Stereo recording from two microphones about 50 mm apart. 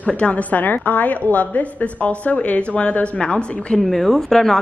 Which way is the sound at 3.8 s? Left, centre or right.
Centre.